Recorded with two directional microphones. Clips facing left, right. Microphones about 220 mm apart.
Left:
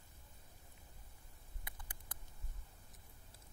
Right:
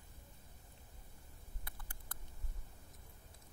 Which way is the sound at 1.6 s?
15° left (ahead or behind).